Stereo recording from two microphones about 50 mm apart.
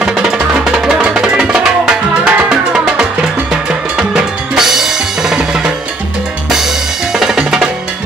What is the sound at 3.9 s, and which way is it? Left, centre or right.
Drum, centre.